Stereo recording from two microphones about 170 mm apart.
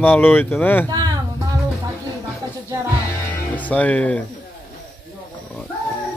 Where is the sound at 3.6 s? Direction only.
10° left (ahead or behind).